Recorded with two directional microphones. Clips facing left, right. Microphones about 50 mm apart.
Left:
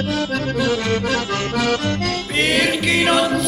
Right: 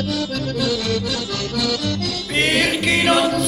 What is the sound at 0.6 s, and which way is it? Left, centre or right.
Accordion, left.